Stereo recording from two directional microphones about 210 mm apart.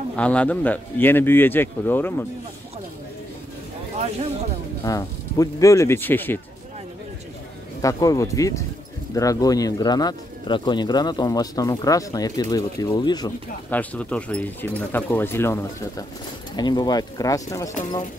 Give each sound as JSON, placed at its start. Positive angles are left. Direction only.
{"t": 0.1, "sound": "speech", "side_deg": 5}
{"t": 4.8, "sound": "speech", "side_deg": 15}
{"t": 7.8, "sound": "speech", "side_deg": 15}
{"t": 13.7, "sound": "speech", "side_deg": 5}